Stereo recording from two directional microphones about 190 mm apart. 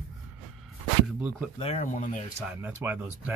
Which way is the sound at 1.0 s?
5° right (ahead or behind).